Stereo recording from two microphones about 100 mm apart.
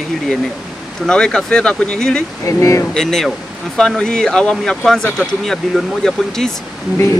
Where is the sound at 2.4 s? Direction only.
30° left (ahead or behind).